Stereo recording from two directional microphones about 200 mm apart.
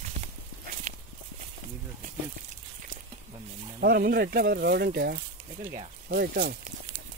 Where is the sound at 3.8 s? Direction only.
50° right (ahead or behind).